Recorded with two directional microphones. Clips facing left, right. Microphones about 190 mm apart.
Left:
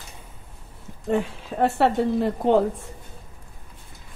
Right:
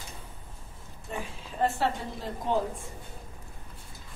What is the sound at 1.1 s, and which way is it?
A woman's voice, 70° left (ahead or behind).